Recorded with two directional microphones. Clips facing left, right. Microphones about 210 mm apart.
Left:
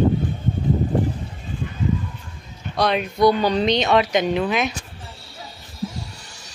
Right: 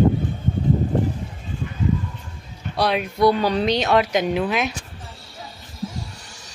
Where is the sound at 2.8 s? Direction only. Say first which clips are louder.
Left 1 dB; 5° right (ahead or behind).